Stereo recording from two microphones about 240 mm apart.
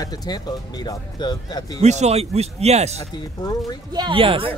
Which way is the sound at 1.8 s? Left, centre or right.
Right.